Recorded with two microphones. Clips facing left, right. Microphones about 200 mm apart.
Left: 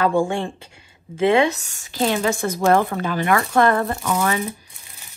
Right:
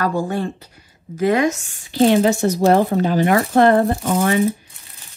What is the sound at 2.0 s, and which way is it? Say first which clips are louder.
Speech: right 7 dB; 50° right (ahead or behind).